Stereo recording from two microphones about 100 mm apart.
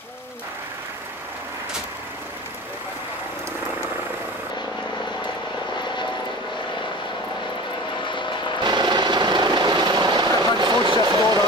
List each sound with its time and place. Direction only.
8.0 s vehicle: 50° left (ahead or behind)
8.6 s vehicle: 45° right (ahead or behind)